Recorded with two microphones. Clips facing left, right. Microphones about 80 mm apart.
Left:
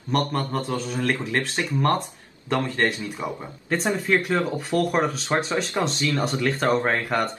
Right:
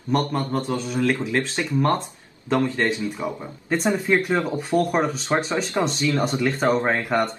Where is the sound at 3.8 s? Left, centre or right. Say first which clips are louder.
Right 2 dB; right.